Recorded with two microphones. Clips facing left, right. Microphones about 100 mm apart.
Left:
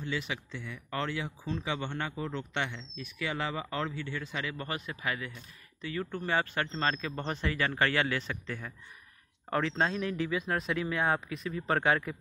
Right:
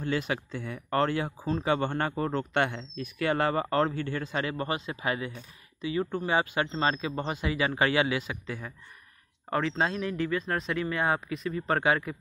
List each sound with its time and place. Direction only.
0.0 s speech: 50° right (ahead or behind)
4.6 s speech: 25° right (ahead or behind)
5.8 s speech: 15° right (ahead or behind)